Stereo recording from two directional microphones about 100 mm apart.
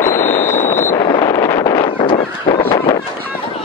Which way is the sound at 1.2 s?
30° left (ahead or behind).